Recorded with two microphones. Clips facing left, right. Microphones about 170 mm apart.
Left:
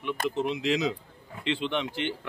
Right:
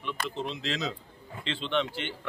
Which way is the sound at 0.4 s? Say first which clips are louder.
Left 8 dB; 15° left (ahead or behind).